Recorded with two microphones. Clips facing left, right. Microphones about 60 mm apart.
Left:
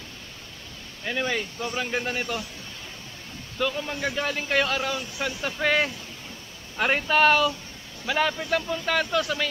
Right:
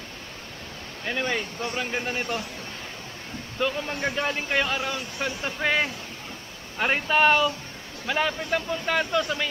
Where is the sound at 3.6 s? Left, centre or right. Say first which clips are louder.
Even; centre.